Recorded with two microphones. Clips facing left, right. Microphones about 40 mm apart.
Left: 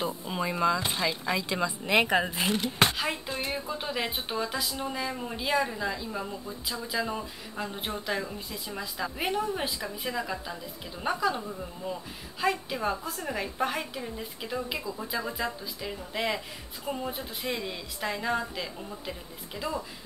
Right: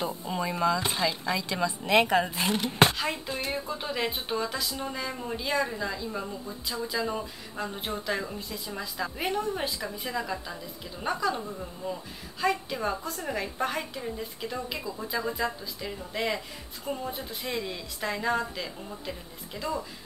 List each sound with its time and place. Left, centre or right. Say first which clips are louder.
0.2 s speech: even; centre
2.5 s speech: right 3 dB; centre
2.9 s speech: even; centre